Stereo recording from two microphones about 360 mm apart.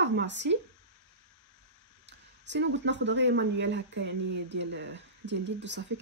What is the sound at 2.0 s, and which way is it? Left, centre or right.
Speech, right.